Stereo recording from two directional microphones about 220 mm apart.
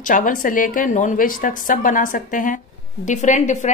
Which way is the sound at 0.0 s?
35° left (ahead or behind).